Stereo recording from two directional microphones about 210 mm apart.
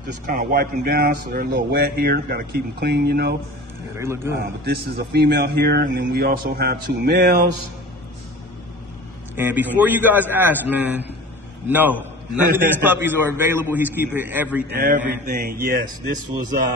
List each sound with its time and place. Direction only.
0.3 s a man's voice: 40° right (ahead or behind)
4.0 s a man's voice: 10° right (ahead or behind)
4.4 s a man's voice: 50° right (ahead or behind)
9.3 s a man's voice: 10° right (ahead or behind)
14.8 s a man's voice: 40° right (ahead or behind)